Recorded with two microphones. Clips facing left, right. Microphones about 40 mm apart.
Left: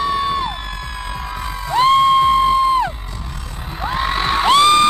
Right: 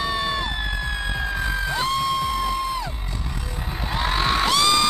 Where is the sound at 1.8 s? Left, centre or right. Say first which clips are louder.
Left 14 dB; left.